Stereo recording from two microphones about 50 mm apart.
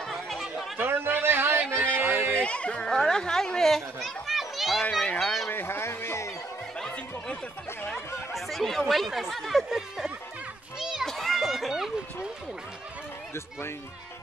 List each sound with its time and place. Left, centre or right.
0.1 s chatter: centre
0.7 s a sound: right
2.0 s music: right
2.3 s chatter: left
2.9 s a sound: centre
5.2 s speech: centre
5.5 s speech: left
7.9 s speech: centre
10.8 s children playing: centre
11.1 s a sound: centre